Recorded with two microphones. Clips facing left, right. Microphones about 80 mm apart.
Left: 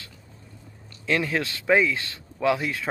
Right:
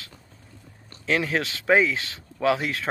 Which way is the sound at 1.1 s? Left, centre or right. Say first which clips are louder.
Right 1 dB; right.